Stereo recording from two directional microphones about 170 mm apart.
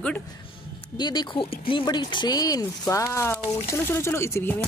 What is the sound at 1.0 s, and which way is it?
Speech, 25° left (ahead or behind).